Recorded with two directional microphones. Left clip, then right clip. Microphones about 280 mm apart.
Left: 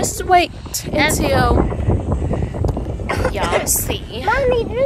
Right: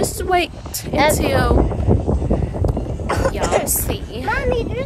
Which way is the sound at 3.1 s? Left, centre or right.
Centre.